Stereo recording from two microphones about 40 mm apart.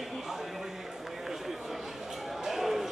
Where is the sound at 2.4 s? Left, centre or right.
Centre.